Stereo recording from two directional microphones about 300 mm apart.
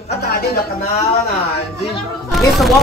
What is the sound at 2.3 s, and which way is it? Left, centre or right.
Speech, centre.